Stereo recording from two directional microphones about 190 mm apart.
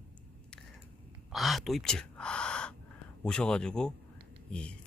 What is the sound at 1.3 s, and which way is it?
Speech, centre (ahead or behind).